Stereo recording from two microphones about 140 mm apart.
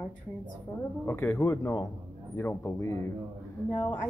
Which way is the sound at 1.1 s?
15° left (ahead or behind).